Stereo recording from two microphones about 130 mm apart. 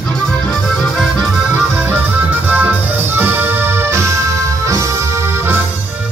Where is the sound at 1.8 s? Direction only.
15° right (ahead or behind).